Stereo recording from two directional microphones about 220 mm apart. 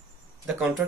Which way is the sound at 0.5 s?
Centre (ahead or behind).